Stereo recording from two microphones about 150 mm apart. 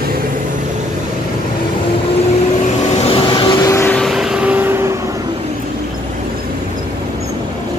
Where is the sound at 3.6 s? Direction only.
20° left (ahead or behind).